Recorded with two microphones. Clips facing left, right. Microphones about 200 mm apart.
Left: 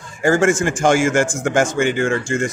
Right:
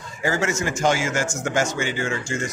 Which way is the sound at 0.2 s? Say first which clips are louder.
Left 8 dB; 50° left (ahead or behind).